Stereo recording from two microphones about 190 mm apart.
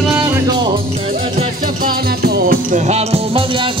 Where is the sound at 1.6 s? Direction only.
50° right (ahead or behind).